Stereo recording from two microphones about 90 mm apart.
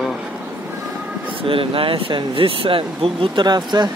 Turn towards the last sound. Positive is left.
turn(degrees=-50)  # may be behind; listen again after turning